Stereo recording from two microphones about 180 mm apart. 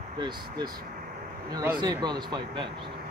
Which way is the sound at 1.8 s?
25° right (ahead or behind).